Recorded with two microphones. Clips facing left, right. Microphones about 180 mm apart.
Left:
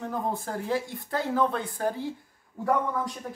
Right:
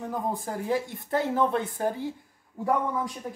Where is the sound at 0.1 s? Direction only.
15° right (ahead or behind).